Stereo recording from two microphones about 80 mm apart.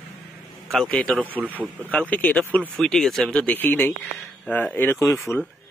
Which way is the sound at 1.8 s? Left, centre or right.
Centre.